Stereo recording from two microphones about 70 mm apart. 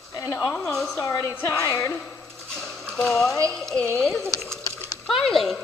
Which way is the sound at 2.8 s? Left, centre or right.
Centre.